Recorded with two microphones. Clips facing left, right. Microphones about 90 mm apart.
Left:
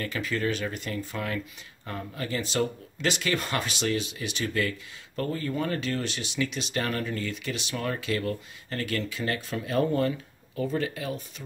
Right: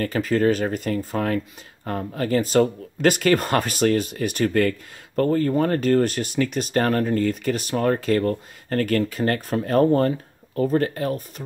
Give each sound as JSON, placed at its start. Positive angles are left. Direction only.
{"t": 0.0, "sound": "speech", "side_deg": -40}